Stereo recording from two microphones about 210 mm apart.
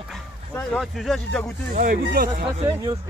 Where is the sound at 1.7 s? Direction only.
40° right (ahead or behind).